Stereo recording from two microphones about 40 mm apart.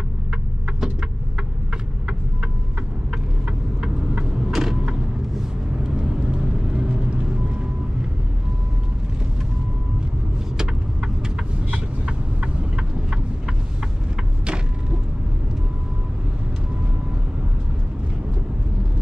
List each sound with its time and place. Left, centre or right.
4.5 s creak: centre
5.9 s vehicle: right
10.6 s vehicle: centre
11.7 s vehicle: right